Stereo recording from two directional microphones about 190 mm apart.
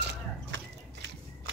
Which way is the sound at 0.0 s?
65° right (ahead or behind).